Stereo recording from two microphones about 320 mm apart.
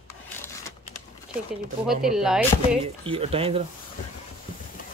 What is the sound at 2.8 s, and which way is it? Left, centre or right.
Speech, centre.